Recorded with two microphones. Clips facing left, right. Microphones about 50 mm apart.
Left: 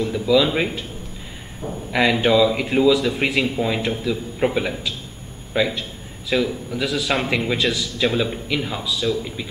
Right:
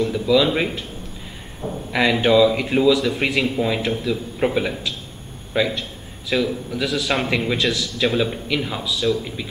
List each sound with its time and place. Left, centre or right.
0.0 s speech: centre